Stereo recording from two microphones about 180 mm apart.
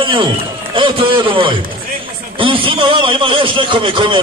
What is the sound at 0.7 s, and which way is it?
A man's voice, 30° right (ahead or behind).